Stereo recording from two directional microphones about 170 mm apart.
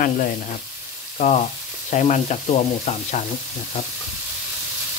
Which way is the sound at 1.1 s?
45° left (ahead or behind).